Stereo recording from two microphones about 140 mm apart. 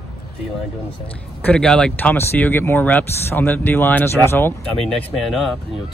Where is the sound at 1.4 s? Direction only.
5° left (ahead or behind).